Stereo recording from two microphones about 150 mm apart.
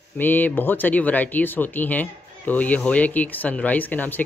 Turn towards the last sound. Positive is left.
turn(degrees=10)  # may be behind; listen again after turning